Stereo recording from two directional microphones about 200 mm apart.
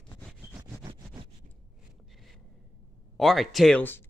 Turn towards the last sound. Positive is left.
turn(degrees=10)  # may be behind; listen again after turning